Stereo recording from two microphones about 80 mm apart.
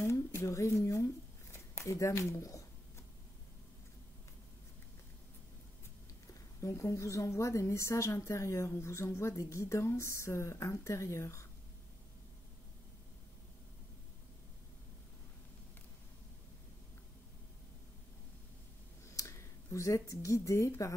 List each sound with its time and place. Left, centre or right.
0.0 s a sound: left
1.5 s speech: left
6.6 s a woman's voice: left
19.1 s speech: left